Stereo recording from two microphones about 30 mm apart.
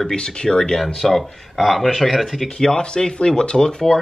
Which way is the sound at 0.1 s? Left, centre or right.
Left.